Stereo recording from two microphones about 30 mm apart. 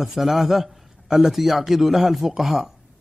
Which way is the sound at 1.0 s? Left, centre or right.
Centre.